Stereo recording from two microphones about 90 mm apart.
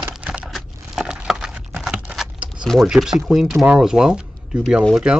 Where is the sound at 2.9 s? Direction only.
5° right (ahead or behind).